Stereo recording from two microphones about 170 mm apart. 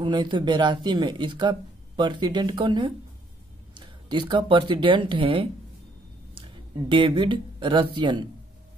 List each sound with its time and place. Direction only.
0.0 s speech: 25° right (ahead or behind)
6.9 s speech: 30° right (ahead or behind)